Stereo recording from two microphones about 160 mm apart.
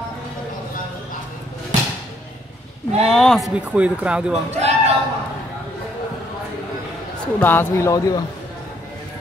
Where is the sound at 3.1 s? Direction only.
Centre (ahead or behind).